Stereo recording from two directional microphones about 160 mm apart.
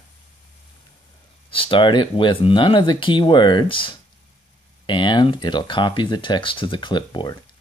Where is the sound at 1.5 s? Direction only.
35° left (ahead or behind).